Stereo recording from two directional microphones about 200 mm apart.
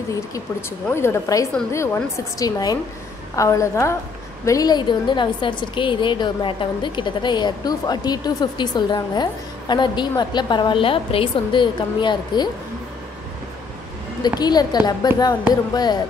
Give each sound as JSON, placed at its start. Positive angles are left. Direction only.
{"t": 0.1, "sound": "a woman's voice", "side_deg": 15}
{"t": 14.4, "sound": "a woman's voice", "side_deg": 20}